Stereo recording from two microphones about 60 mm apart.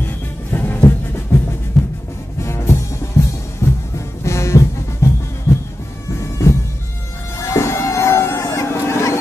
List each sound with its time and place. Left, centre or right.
0.0 s music: left
1.3 s music: left
1.8 s music: centre
2.4 s music: left
7.3 s a sound: left